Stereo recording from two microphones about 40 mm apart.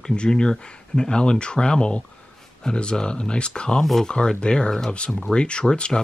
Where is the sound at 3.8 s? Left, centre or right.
Centre.